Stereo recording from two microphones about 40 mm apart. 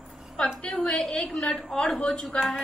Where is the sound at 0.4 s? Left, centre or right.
Left.